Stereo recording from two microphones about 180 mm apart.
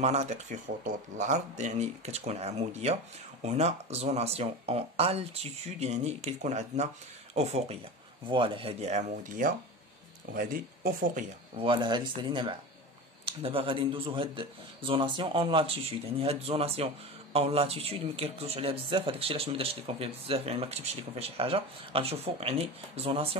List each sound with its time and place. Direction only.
0.0 s speech: 35° right (ahead or behind)
11.5 s speech: 30° right (ahead or behind)